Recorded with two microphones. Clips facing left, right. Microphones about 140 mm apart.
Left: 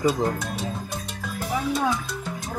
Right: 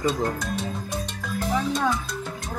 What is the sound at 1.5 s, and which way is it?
Music, 10° left (ahead or behind).